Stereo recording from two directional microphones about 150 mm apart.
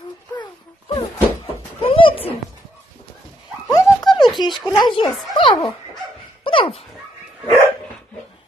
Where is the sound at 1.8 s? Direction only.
35° left (ahead or behind).